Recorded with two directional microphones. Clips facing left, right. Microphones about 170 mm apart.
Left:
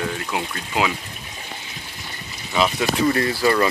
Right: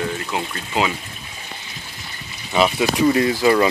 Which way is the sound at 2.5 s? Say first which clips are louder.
Right 3 dB; 5° right (ahead or behind).